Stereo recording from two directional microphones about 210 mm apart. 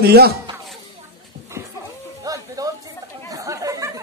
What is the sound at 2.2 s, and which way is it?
Music, 15° right (ahead or behind).